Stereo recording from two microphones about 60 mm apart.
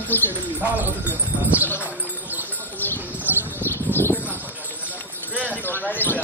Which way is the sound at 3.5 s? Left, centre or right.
Left.